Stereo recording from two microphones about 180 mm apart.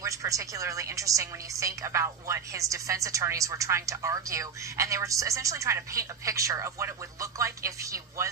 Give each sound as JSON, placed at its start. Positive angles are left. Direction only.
{"t": 0.0, "sound": "a woman's voice", "side_deg": -15}